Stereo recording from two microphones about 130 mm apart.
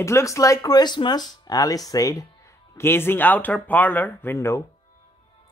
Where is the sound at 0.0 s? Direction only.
25° left (ahead or behind).